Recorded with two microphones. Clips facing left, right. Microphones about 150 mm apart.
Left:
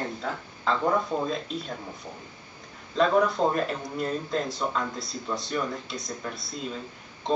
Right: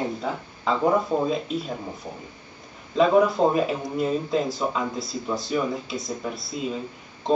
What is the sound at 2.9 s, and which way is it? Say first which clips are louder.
Speech: right 4 dB; 5° right (ahead or behind).